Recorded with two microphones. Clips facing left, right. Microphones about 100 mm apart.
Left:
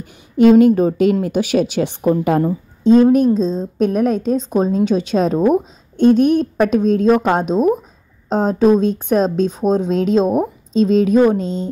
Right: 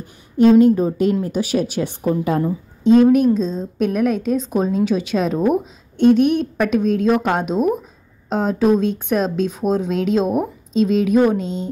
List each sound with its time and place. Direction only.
0.4 s speech: 90° left
1.2 s speech: 70° left (ahead or behind)
2.4 s a woman's voice: 35° left (ahead or behind)